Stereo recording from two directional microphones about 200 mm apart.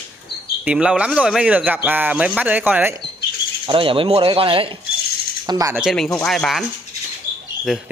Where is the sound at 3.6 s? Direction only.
25° right (ahead or behind).